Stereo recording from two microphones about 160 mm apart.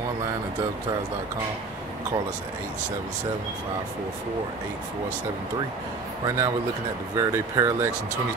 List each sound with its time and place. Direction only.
6.2 s speech: 20° right (ahead or behind)